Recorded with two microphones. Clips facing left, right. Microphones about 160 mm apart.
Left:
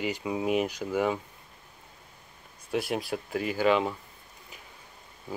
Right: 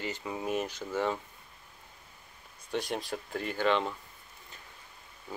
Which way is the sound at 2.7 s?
10° left (ahead or behind).